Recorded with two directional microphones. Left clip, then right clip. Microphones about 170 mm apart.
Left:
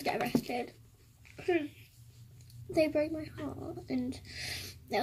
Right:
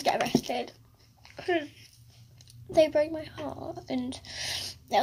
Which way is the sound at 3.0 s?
45° right (ahead or behind).